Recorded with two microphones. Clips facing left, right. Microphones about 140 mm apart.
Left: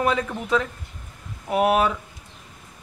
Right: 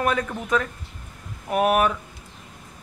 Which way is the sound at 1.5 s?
20° left (ahead or behind).